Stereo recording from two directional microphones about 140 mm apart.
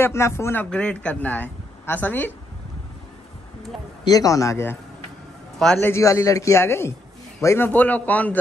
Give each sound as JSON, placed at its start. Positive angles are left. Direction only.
{"t": 0.0, "sound": "speech", "side_deg": 20}
{"t": 0.7, "sound": "speech", "side_deg": 5}
{"t": 4.0, "sound": "a man's voice", "side_deg": 25}
{"t": 5.8, "sound": "a man's voice", "side_deg": 20}